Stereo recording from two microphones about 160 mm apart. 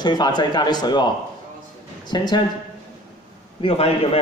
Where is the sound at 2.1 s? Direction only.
25° left (ahead or behind).